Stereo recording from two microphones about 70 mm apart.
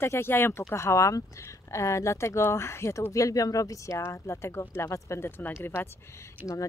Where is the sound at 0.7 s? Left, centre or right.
Left.